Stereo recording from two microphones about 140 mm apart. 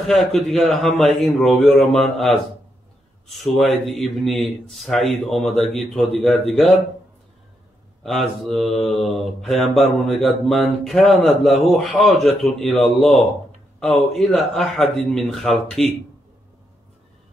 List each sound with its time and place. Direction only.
0.0 s mantra: centre (ahead or behind)
3.3 s mantra: centre (ahead or behind)
8.0 s mantra: centre (ahead or behind)